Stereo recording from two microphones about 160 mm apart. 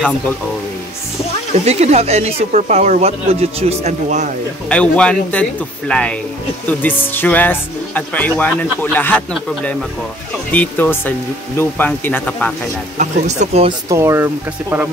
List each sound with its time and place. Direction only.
1.5 s speech: 40° right (ahead or behind)
4.6 s speech: 5° left (ahead or behind)
12.9 s speech: 50° right (ahead or behind)
13.8 s speech: 15° right (ahead or behind)